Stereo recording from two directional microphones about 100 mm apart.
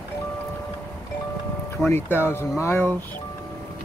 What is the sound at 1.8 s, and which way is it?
Speech, 20° left (ahead or behind).